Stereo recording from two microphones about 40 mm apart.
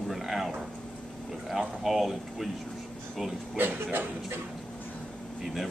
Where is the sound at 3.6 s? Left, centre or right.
Right.